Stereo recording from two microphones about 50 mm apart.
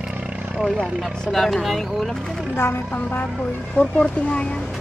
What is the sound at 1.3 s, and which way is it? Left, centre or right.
Speech, centre.